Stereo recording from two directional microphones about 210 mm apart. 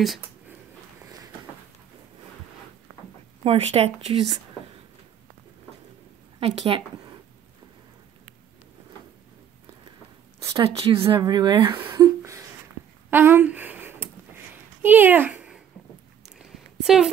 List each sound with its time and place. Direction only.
3.4 s speech: 30° right (ahead or behind)
6.4 s speech: 30° right (ahead or behind)
10.6 s speech: 25° right (ahead or behind)
11.7 s a sound: 15° right (ahead or behind)